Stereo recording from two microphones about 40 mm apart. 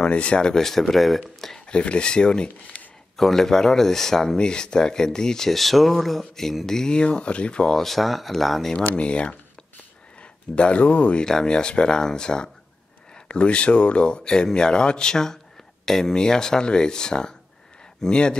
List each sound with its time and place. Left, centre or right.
0.0 s speech: left
0.5 s speech: centre
1.7 s speech: left
3.2 s speech: centre; by 7.7 s left
7.7 s speech: centre
8.9 s speech: left
10.5 s speech: left
11.1 s speech: centre
13.3 s speech: left